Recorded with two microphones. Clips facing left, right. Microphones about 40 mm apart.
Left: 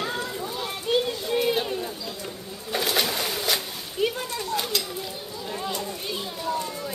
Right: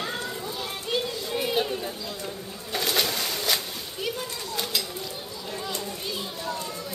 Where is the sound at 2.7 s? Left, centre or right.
Centre.